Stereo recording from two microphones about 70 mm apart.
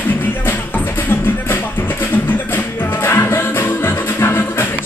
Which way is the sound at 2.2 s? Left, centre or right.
Left.